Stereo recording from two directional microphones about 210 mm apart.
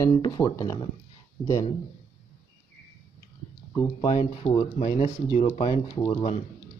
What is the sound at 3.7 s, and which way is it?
Speech, 15° left (ahead or behind).